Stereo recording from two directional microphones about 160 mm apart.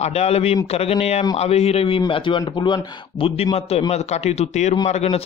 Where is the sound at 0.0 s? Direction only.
40° left (ahead or behind).